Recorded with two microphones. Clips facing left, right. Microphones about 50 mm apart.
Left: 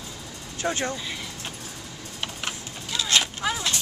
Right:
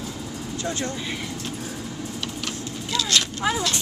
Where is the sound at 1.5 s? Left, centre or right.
Centre.